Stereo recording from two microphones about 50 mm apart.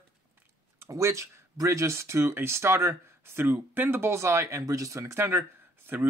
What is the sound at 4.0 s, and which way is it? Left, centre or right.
Speech, right.